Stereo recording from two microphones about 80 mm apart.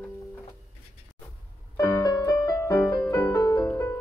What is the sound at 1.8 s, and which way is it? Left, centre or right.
Piano, left.